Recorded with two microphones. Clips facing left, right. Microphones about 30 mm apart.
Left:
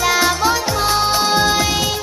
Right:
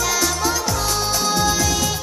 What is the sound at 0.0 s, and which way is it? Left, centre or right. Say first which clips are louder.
Music: left 5 dB; left.